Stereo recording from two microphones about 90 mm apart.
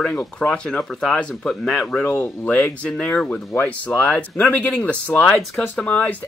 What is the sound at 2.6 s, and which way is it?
A man's voice, 15° left (ahead or behind).